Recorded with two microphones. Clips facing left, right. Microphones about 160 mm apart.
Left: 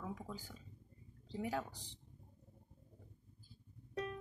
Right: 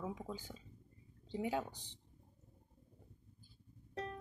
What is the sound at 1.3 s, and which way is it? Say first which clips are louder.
Speech: right 2 dB; 20° right (ahead or behind).